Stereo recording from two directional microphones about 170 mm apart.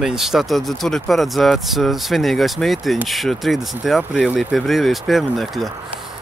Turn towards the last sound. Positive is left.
turn(degrees=0)  # may be behind; listen again after turning